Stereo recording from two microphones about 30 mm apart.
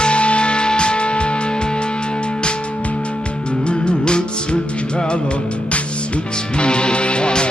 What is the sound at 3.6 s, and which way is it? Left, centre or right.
Music, left.